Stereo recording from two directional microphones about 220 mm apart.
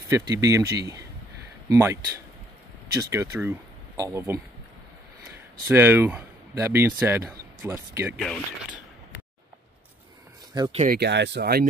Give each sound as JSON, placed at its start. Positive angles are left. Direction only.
{"t": 0.1, "sound": "speech", "side_deg": -15}
{"t": 5.7, "sound": "speech", "side_deg": -10}
{"t": 10.5, "sound": "speech", "side_deg": -20}
{"t": 10.8, "sound": "speech", "side_deg": -45}